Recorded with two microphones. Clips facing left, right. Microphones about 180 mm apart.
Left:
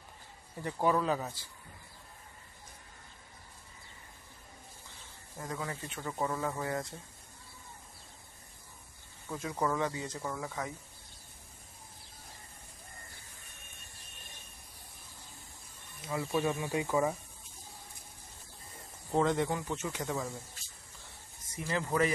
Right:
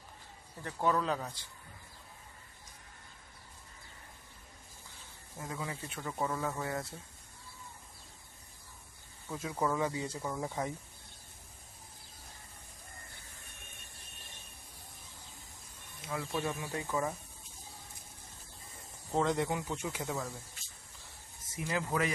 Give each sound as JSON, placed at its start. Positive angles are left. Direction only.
{"t": 0.7, "sound": "speech", "side_deg": 10}
{"t": 5.4, "sound": "speech", "side_deg": -5}
{"t": 6.1, "sound": "speech", "side_deg": 5}
{"t": 9.3, "sound": "speech", "side_deg": -5}
{"t": 10.4, "sound": "speech", "side_deg": -25}
{"t": 16.1, "sound": "speech", "side_deg": 5}
{"t": 19.1, "sound": "speech", "side_deg": 0}
{"t": 19.5, "sound": "speech", "side_deg": -10}
{"t": 21.5, "sound": "speech", "side_deg": -5}